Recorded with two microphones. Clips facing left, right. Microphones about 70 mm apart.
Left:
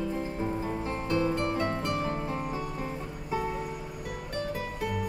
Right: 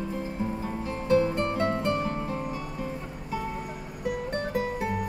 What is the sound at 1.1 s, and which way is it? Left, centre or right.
Music, right.